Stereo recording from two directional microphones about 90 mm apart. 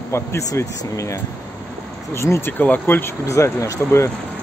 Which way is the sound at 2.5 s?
20° left (ahead or behind).